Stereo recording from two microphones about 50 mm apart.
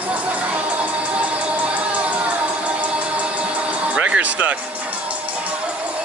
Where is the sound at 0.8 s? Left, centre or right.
Right.